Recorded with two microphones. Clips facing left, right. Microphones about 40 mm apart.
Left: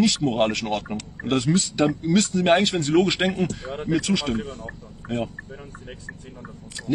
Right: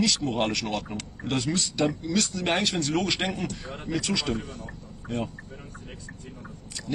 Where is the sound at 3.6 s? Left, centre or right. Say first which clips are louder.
Left 7 dB; centre.